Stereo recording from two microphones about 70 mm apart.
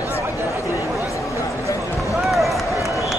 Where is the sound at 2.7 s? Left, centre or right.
Left.